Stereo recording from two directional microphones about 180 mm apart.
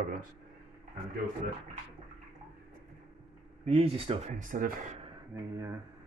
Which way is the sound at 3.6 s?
35° right (ahead or behind).